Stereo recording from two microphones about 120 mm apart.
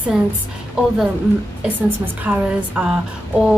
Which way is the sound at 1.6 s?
15° right (ahead or behind).